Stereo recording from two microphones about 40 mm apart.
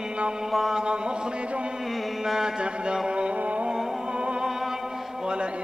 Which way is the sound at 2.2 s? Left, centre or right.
Centre.